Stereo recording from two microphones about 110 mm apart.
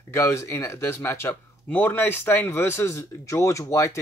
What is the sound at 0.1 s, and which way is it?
Speech, 25° left (ahead or behind).